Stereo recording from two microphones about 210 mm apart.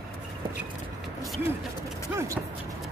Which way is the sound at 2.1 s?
15° right (ahead or behind).